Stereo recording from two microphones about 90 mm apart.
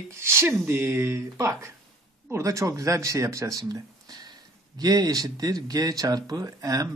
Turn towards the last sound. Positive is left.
turn(degrees=-40)  # may be behind; listen again after turning